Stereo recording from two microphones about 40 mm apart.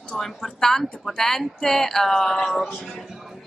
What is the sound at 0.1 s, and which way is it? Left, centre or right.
Speech, centre.